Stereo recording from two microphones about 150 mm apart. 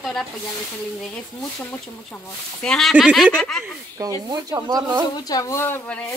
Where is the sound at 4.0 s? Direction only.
25° right (ahead or behind).